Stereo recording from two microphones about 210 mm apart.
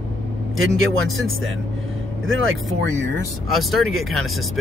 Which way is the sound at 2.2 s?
70° right (ahead or behind).